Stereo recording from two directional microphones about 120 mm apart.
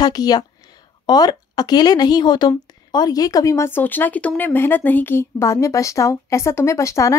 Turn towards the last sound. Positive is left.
turn(degrees=25)  # may be behind; listen again after turning